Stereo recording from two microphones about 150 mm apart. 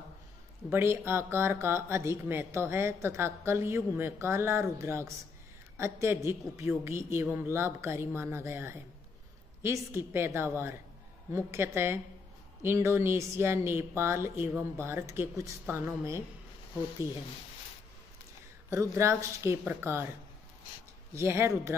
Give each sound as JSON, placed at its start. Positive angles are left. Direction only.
{"t": 0.7, "sound": "speech", "side_deg": -15}
{"t": 18.7, "sound": "speech", "side_deg": -20}
{"t": 21.1, "sound": "speech", "side_deg": -15}